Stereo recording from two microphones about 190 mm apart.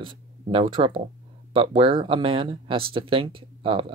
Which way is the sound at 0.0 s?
25° right (ahead or behind).